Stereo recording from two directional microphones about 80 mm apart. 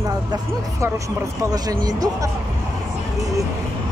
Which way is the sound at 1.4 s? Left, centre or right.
Right.